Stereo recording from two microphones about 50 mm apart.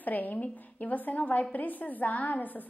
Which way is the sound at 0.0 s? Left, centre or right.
Left.